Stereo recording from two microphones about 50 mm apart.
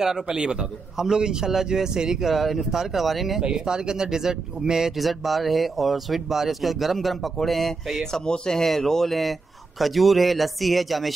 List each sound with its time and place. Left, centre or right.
0.0 s a man's voice: centre
3.4 s speech: centre